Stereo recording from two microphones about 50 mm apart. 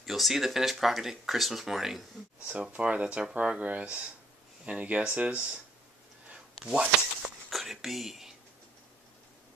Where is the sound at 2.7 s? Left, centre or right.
Right.